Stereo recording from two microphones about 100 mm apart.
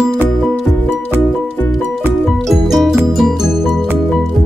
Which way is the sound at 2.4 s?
Centre (ahead or behind).